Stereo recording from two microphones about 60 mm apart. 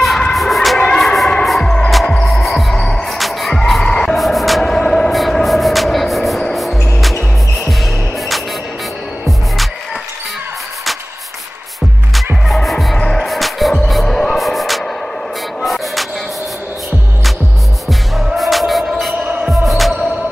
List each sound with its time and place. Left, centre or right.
0.3 s music: centre
0.7 s a sound: centre
1.0 s music: centre
1.6 s music: centre
1.9 s music: centre
2.8 s music: centre
3.1 s music: centre
3.9 s a sound: centre
4.2 s vehicle: centre
5.1 s music: centre
12.4 s music: centre
17.8 s music: centre